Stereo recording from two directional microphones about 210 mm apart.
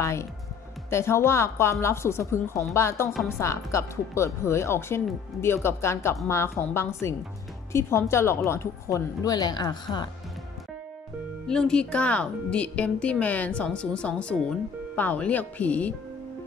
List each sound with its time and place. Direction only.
0.0 s speech: 15° left (ahead or behind)
3.1 s speech: centre (ahead or behind)
3.3 s speech: 15° left (ahead or behind)
11.4 s speech: 5° left (ahead or behind)